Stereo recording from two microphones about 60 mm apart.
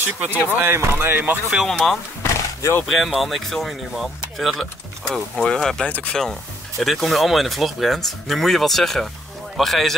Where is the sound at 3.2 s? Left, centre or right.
Centre.